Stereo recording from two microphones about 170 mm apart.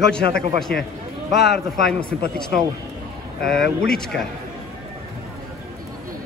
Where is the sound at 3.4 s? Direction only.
Centre (ahead or behind).